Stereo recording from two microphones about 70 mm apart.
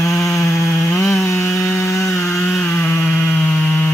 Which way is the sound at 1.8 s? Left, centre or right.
Left.